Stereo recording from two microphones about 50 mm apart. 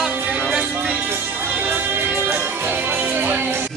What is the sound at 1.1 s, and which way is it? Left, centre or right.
Music, right.